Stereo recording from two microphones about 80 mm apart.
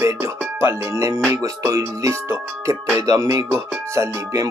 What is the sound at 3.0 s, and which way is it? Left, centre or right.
Music, right.